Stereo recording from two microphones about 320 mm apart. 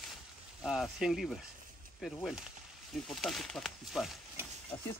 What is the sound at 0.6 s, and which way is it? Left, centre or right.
Speech, centre.